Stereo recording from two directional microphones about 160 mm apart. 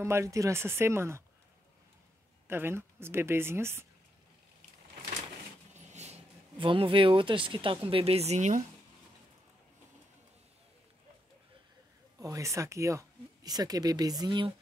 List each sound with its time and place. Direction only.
0.0 s speech: 20° right (ahead or behind)
2.4 s speech: 15° right (ahead or behind)
5.9 s speech: 45° right (ahead or behind)
12.2 s speech: 20° right (ahead or behind)